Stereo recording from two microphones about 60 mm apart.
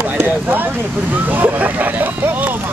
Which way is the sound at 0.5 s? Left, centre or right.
Right.